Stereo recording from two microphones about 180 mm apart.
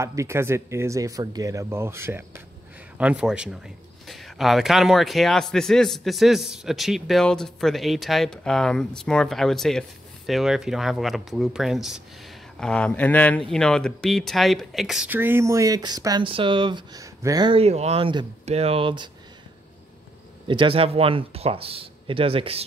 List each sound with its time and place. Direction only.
0.0 s a man's voice: 15° right (ahead or behind)
20.4 s speech: 30° right (ahead or behind)